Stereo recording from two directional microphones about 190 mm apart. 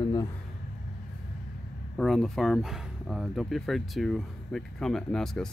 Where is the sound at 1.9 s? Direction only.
Centre (ahead or behind).